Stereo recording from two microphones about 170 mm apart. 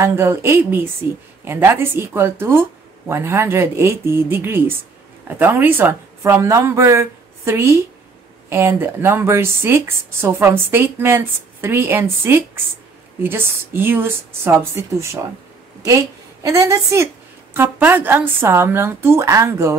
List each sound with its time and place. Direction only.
0.0 s speech: 15° right (ahead or behind)
16.4 s speech: 15° right (ahead or behind)